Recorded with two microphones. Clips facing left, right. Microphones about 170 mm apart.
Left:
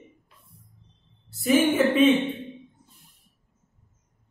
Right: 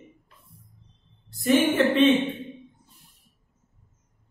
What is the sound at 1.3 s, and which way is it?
Speech, 5° left (ahead or behind).